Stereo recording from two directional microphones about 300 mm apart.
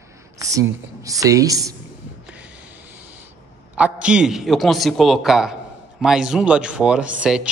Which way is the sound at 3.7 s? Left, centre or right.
Centre.